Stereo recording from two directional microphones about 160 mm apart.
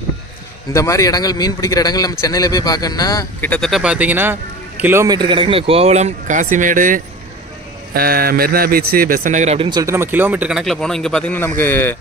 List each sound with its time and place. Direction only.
0.7 s a man's voice: 20° left (ahead or behind)
3.3 s a man's voice: 10° left (ahead or behind); by 7.0 s 55° right (ahead or behind)
7.9 s speech: 75° right (ahead or behind); by 9.7 s 45° right (ahead or behind)
9.7 s speech: 20° right (ahead or behind)
10.6 s speech: centre (ahead or behind)